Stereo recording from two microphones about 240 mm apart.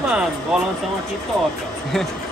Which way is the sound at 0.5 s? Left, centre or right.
Centre.